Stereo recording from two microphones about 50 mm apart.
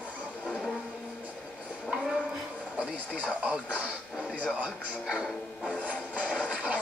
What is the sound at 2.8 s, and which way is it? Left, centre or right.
Television, right.